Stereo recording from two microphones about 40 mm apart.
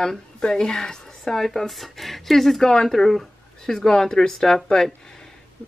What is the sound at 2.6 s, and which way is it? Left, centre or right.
Speech, centre.